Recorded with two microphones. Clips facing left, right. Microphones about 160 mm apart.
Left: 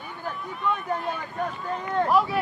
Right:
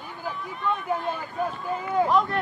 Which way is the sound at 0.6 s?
Centre (ahead or behind).